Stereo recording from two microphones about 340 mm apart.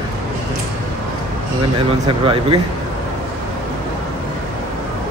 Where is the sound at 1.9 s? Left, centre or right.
Centre.